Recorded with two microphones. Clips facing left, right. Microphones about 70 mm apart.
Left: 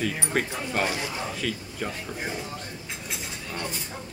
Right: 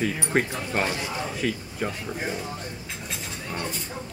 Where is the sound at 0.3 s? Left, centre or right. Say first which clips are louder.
Right 2 dB; right.